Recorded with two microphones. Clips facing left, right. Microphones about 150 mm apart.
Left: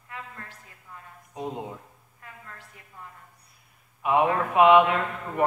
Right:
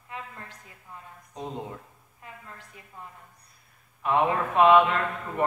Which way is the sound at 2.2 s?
20° right (ahead or behind).